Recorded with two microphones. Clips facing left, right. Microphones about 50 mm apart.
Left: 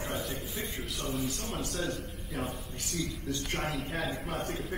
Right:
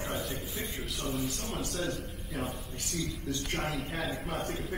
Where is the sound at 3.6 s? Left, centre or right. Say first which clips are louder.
Even; left.